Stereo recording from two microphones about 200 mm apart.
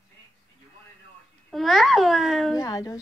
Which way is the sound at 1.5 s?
Centre (ahead or behind).